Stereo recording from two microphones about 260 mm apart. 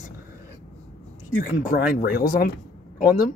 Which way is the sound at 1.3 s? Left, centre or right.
Left.